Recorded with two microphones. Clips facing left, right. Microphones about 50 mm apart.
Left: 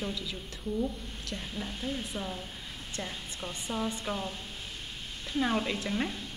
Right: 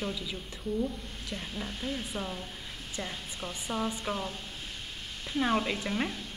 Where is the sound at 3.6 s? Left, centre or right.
Centre.